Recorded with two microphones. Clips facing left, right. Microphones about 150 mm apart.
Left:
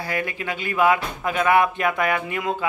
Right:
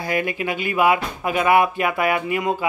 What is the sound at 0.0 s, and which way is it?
Speech, 15° right (ahead or behind).